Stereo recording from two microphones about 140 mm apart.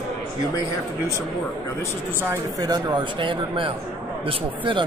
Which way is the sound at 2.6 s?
30° right (ahead or behind).